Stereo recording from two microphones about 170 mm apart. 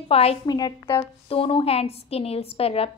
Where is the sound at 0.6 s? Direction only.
25° left (ahead or behind).